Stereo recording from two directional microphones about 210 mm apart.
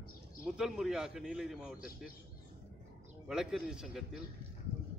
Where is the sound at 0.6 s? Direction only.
5° right (ahead or behind).